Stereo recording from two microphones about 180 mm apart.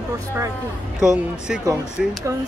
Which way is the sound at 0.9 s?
5° right (ahead or behind).